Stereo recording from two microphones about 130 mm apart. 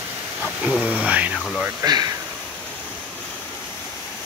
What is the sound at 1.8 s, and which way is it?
Speech, 30° right (ahead or behind).